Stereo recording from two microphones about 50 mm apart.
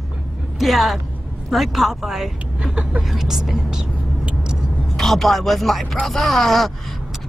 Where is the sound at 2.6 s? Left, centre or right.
Right.